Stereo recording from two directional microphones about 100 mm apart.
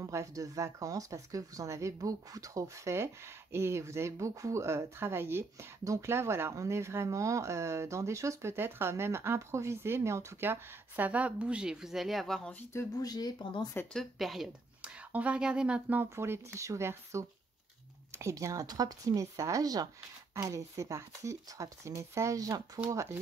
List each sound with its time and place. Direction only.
0.0 s speech: 35° right (ahead or behind); by 12.5 s 5° left (ahead or behind)
12.7 s speech: 40° left (ahead or behind)
13.9 s speech: centre (ahead or behind)
14.8 s speech: 10° right (ahead or behind); by 23.1 s 30° right (ahead or behind)